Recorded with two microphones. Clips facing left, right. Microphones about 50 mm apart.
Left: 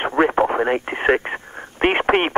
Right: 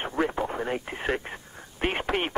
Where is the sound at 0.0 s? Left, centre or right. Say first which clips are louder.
Left 10 dB; left.